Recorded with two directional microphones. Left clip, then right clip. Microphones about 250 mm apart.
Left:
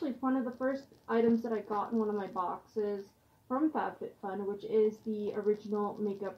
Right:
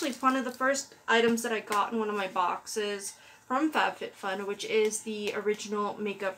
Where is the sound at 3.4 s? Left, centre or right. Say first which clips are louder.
Right 5 dB; centre.